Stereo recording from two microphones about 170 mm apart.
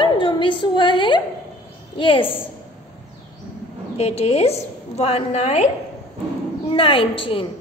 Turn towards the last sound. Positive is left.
turn(degrees=30)  # may be behind; listen again after turning